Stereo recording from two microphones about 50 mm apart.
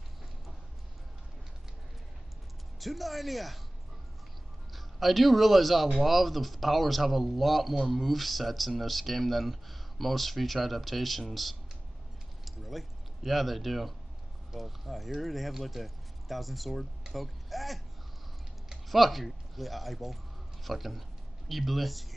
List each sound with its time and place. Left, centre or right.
2.8 s speech: centre
4.7 s a man's voice: centre